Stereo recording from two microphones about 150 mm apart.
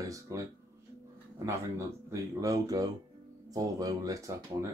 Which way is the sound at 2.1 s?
20° right (ahead or behind).